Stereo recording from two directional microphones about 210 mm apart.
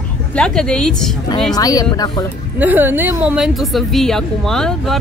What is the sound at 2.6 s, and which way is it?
A woman's voice, 10° right (ahead or behind).